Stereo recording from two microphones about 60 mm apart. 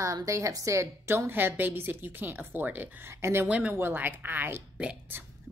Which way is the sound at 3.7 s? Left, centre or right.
Right.